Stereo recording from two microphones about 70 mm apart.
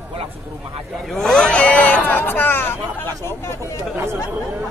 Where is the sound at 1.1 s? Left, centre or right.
Centre; by 3.5 s left.